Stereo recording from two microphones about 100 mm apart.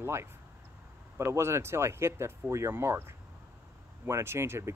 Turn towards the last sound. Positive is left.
turn(degrees=-25)  # may be behind; listen again after turning